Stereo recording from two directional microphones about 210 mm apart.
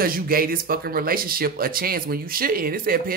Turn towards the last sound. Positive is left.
turn(degrees=-45)  # may be behind; listen again after turning